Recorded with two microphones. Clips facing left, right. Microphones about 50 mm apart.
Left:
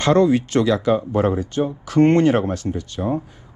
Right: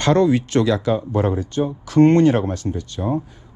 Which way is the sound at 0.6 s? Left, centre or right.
Left.